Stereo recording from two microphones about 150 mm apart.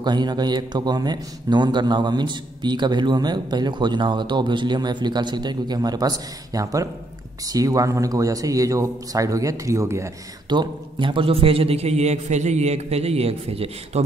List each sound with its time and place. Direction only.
0.0 s a man's voice: 30° right (ahead or behind)
10.5 s a man's voice: 30° right (ahead or behind)